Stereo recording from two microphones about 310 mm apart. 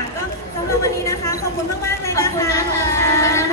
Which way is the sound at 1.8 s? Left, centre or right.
Centre.